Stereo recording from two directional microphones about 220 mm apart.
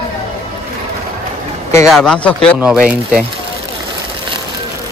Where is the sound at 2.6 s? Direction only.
5° right (ahead or behind).